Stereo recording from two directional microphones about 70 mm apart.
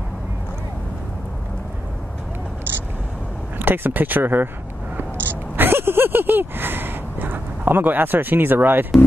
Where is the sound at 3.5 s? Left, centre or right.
Right.